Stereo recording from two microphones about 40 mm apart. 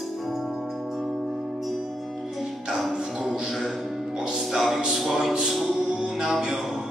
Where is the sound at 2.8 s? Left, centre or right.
Centre.